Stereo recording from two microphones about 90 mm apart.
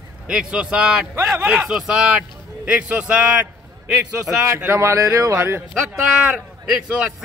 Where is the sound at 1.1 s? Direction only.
30° right (ahead or behind).